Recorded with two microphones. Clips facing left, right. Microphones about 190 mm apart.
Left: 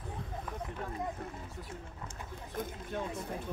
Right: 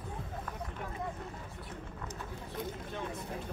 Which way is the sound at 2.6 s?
50° left (ahead or behind).